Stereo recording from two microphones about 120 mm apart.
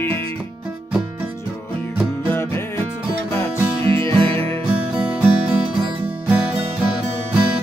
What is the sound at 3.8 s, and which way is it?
Music, 45° right (ahead or behind).